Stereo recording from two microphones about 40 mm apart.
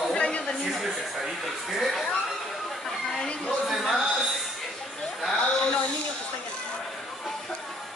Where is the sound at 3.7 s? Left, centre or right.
Centre.